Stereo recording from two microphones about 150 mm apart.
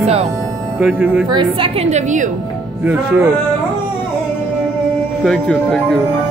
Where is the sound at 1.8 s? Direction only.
50° right (ahead or behind).